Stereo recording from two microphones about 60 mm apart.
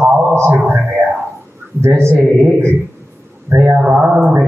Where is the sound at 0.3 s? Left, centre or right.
Right.